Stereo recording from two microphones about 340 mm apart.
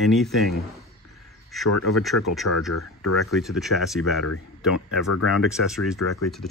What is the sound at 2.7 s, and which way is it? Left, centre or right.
Speech, left.